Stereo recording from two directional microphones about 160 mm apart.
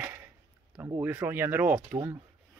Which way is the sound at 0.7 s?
20° right (ahead or behind).